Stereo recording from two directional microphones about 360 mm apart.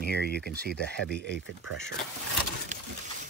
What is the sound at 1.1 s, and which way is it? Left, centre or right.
Speech, right.